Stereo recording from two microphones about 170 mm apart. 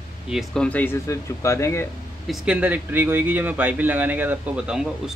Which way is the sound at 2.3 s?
5° right (ahead or behind).